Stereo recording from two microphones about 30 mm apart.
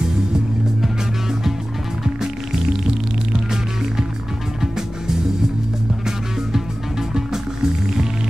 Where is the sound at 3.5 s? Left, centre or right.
Centre.